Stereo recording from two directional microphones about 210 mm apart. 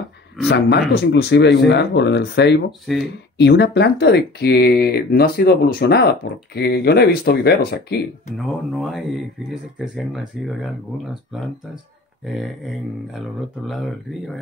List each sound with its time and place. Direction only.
0.5 s speech: 50° left (ahead or behind)
2.9 s speech: centre (ahead or behind)
3.3 s speech: 55° left (ahead or behind)
8.4 s speech: centre (ahead or behind)
13.7 s speech: centre (ahead or behind)